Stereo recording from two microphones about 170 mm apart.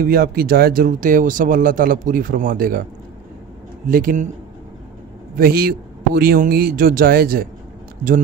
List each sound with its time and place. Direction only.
0.0 s speech: 65° right (ahead or behind)
3.8 s speech: 55° right (ahead or behind)
5.3 s speech: 65° right (ahead or behind)